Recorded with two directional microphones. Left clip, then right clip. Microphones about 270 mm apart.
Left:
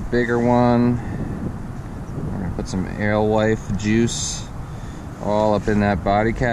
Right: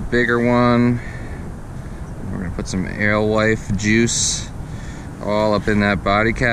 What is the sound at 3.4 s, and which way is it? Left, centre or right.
Speech, right.